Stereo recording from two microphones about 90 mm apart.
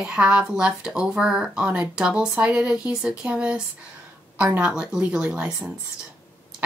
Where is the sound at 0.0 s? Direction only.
10° right (ahead or behind).